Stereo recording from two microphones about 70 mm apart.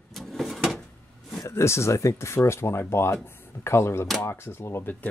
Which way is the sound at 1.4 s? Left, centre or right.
Left.